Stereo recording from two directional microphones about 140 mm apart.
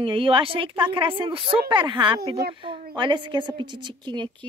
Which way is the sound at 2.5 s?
35° right (ahead or behind).